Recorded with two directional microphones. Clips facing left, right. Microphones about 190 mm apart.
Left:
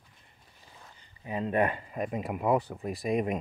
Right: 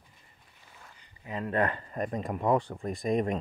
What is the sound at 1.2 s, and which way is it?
Speech, 20° left (ahead or behind).